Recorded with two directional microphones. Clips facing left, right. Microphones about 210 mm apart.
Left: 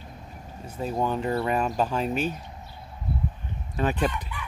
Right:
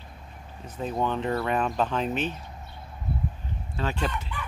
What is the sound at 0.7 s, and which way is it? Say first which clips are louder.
Speech: left 1 dB; 10° left (ahead or behind).